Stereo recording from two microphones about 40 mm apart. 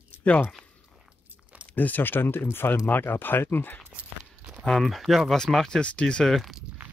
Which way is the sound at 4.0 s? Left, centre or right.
Right.